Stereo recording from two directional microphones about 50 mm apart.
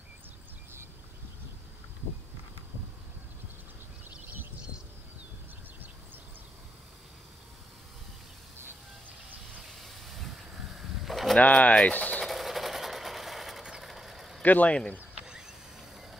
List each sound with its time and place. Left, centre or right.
9.7 s hiss: centre
11.1 s sheep: centre
11.3 s speech: left
12.3 s sewing machine: centre
13.8 s vehicle: centre
14.4 s speech: left
15.1 s a sound: centre